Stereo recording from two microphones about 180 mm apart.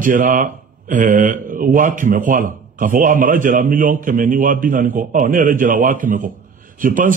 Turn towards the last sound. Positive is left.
turn(degrees=-45)  # may be behind; listen again after turning